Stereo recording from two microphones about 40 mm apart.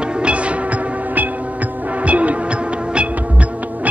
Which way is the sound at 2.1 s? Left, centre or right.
Right.